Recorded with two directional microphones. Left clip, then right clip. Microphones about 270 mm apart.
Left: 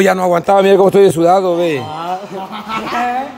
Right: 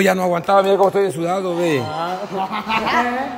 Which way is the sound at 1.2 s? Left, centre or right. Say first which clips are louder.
Left 9 dB; centre.